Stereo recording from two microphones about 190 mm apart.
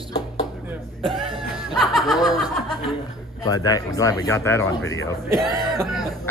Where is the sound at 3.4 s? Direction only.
20° left (ahead or behind).